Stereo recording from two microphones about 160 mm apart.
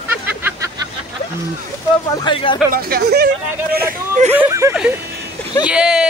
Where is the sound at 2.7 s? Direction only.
80° right.